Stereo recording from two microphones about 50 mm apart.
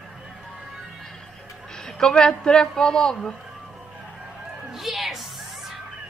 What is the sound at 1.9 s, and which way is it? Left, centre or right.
A man's voice, centre.